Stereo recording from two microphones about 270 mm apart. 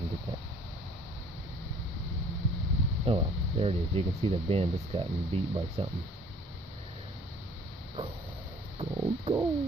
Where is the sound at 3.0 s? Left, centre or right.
Right.